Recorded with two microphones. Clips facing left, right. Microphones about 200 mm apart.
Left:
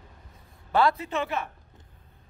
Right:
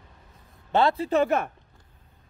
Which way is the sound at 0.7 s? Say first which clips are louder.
Right 3 dB; 25° right (ahead or behind).